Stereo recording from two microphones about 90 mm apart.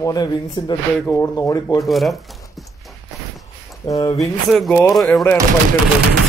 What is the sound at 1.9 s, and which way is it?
Speech, centre (ahead or behind).